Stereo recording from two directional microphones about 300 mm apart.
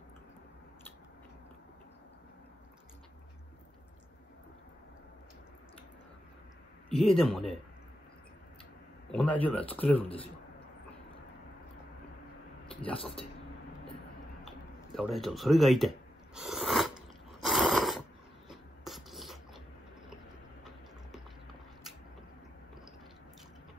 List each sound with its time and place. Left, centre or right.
6.9 s speech: centre
9.1 s speech: centre
10.0 s speech: centre
12.9 s speech: centre
14.4 s a sound: centre
20.6 s a sound: centre